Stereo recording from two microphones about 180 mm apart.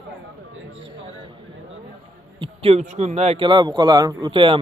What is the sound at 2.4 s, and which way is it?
A man's voice, 35° right (ahead or behind).